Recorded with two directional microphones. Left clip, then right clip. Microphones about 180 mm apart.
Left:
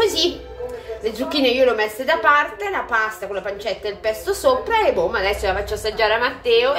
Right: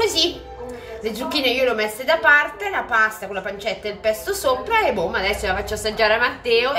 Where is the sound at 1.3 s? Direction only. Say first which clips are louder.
Left 3 dB; 25° left (ahead or behind).